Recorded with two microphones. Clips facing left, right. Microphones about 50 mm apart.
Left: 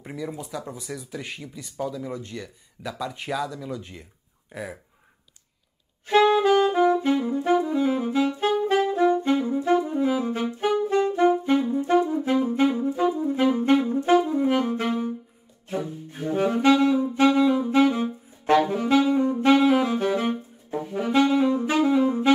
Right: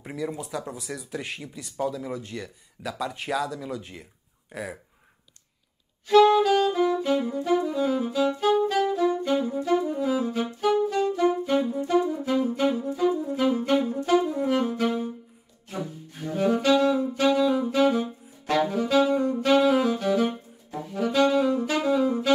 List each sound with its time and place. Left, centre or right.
0.0 s speech: centre
6.0 s saxophone: left